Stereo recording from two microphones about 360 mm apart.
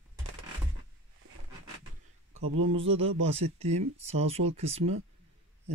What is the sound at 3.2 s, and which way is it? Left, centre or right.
Speech, centre.